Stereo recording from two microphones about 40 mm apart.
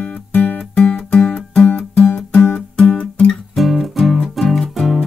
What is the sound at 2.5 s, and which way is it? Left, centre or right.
Music, left.